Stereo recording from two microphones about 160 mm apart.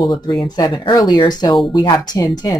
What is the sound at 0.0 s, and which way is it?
Speech, 30° left (ahead or behind).